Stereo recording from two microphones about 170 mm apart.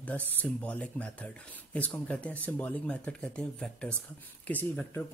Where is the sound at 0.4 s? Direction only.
10° left (ahead or behind).